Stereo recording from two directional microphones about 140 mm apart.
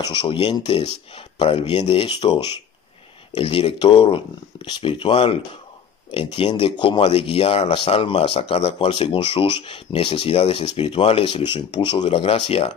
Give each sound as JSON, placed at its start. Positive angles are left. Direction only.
{"t": 0.1, "sound": "speech", "side_deg": 35}